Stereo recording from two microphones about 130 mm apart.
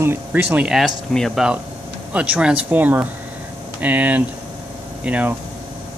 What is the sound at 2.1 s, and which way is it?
Speech, 10° right (ahead or behind).